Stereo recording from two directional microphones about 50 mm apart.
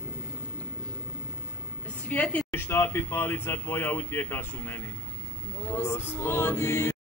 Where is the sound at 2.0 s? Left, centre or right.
Left.